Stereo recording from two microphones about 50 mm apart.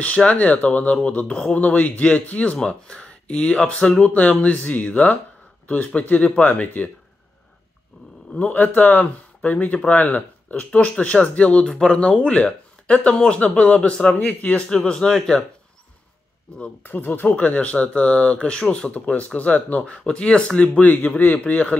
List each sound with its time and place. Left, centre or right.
0.0 s speech: left
8.3 s speech: left
11.6 s a man's voice: centre
11.9 s speech: left
14.7 s a man's voice: centre
16.8 s speech: left
20.6 s speech: left